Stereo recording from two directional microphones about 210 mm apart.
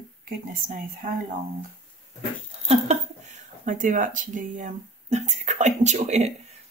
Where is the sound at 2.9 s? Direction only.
35° right (ahead or behind).